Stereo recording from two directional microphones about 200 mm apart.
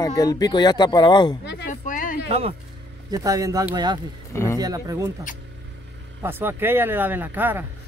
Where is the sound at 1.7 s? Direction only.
40° left (ahead or behind).